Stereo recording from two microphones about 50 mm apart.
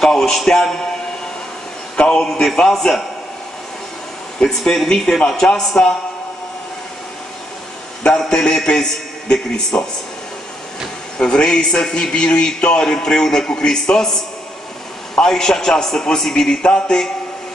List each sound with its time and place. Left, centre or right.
0.0 s a man's voice: centre
2.0 s a man's voice: centre
4.4 s a man's voice: centre
8.1 s a man's voice: centre
11.1 s a man's voice: centre